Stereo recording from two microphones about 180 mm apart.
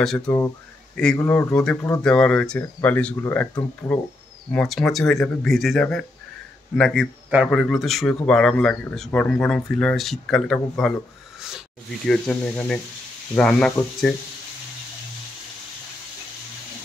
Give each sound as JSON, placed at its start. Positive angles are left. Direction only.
{"t": 0.0, "sound": "speech", "side_deg": 5}
{"t": 4.5, "sound": "speech", "side_deg": 5}
{"t": 12.1, "sound": "speech", "side_deg": 5}